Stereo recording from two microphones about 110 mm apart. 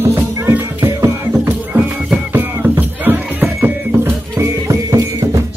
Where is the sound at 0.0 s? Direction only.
20° right (ahead or behind).